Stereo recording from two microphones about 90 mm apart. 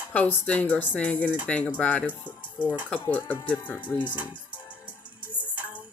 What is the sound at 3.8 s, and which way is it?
Speech, 60° left (ahead or behind).